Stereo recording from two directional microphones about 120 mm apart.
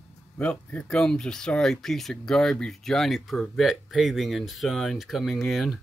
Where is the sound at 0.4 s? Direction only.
10° left (ahead or behind).